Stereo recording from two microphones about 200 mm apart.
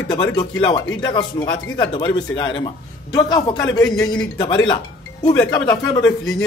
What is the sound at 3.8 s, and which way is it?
Speech, 5° left (ahead or behind).